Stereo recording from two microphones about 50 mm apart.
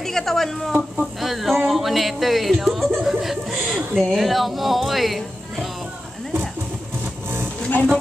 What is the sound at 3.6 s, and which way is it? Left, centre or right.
Speech, centre.